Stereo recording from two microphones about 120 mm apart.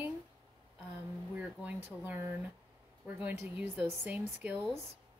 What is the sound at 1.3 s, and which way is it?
A woman's voice, 10° right (ahead or behind).